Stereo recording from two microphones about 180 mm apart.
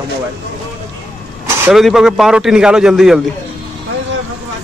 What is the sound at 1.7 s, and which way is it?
Speech, centre (ahead or behind).